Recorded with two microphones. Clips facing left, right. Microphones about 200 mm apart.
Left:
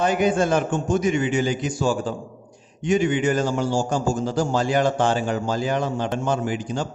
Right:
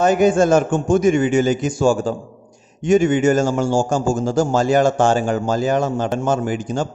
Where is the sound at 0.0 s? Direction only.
45° right (ahead or behind).